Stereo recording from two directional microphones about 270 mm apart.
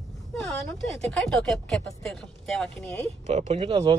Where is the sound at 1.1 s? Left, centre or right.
Centre.